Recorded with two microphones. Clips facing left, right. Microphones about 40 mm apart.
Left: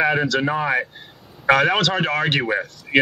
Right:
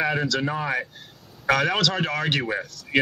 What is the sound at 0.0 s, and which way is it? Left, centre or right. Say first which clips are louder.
A man's voice: left 5 dB; centre.